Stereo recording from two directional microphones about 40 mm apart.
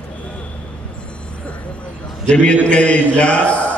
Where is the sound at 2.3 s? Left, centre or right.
Left.